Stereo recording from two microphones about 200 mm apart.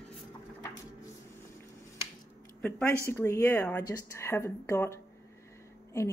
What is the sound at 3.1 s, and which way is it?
Speech, 10° left (ahead or behind).